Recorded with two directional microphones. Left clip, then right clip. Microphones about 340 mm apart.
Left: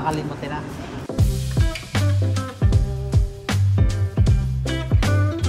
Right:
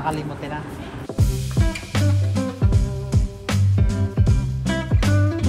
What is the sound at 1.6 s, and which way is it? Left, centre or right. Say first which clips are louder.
Music: right 1 dB; centre.